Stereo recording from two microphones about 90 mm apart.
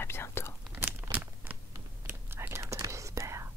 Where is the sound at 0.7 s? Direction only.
20° right (ahead or behind).